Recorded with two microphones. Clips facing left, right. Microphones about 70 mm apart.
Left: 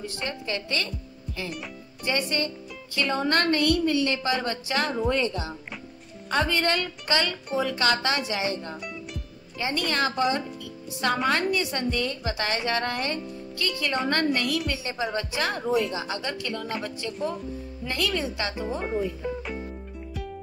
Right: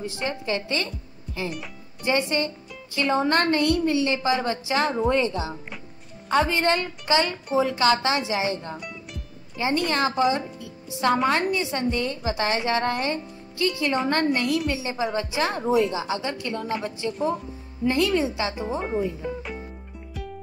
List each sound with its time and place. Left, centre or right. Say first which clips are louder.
0.0 s a woman's voice: right 4 dB; right
2.0 s a woman's voice: right 4 dB; right
6.5 s a woman's voice: right 3 dB; right
8.7 s music: left 1 dB; centre
9.6 s a woman's voice: right 3 dB; right
18.8 s speech: right 2 dB; centre